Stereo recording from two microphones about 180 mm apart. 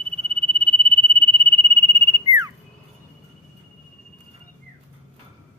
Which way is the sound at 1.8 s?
25° right (ahead or behind).